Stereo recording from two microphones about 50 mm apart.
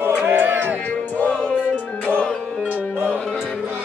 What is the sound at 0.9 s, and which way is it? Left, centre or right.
Music, left.